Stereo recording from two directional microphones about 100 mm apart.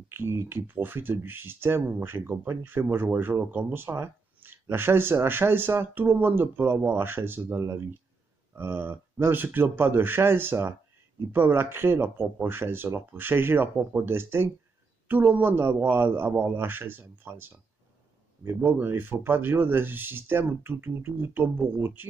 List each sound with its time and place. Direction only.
0.1 s speech: 25° right (ahead or behind)